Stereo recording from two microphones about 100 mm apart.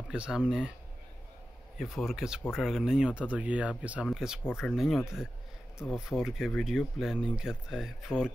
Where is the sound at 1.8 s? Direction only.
Centre (ahead or behind).